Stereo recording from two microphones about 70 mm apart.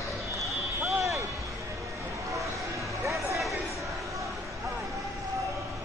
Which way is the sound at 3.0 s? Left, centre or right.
Right.